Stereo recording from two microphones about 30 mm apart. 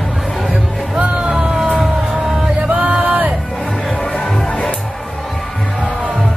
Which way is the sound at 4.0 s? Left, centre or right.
Left.